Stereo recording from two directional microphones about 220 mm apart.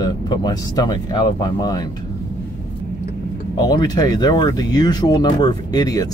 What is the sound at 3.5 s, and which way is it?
Speech, 20° left (ahead or behind).